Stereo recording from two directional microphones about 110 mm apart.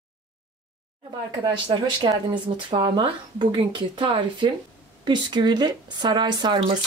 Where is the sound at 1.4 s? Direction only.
40° right (ahead or behind).